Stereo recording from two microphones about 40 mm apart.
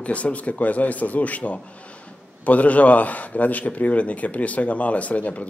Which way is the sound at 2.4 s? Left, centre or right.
Left.